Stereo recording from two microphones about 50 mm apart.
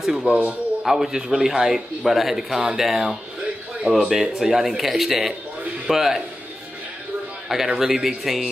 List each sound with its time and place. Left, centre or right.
0.0 s speech: centre
0.3 s speech: right
0.8 s a man's voice: centre
7.4 s a man's voice: centre